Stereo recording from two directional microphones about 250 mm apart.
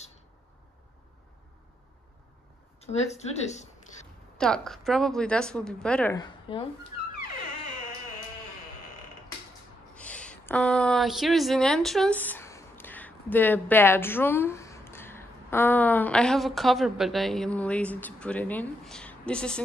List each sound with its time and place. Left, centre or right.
2.8 s speech: left
4.4 s a woman's voice: centre
6.1 s a woman's voice: centre
9.9 s speech: centre